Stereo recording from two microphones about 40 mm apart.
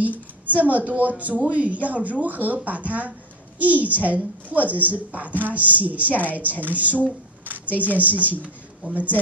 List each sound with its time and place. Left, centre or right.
0.6 s speech: right